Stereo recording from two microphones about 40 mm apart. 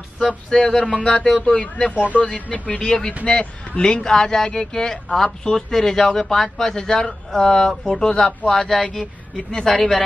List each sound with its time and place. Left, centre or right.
0.5 s speech: centre
2.8 s speech: centre